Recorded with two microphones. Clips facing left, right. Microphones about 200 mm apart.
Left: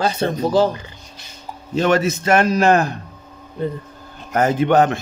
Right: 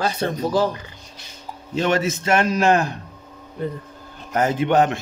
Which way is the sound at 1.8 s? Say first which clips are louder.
Left 4 dB; 40° left (ahead or behind).